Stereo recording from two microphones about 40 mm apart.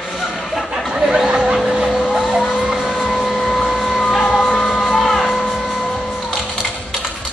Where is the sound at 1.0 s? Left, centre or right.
Centre.